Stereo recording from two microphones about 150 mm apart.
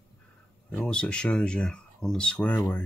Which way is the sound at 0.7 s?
5° left (ahead or behind).